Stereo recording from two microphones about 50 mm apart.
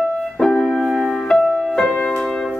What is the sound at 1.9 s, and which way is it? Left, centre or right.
Music, left.